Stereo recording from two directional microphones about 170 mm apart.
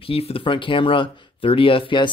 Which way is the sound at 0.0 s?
35° left (ahead or behind).